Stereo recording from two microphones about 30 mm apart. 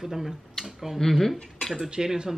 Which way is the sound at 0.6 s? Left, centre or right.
Centre.